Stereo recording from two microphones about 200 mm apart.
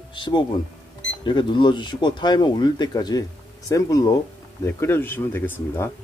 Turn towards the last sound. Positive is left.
turn(degrees=10)  # may be behind; listen again after turning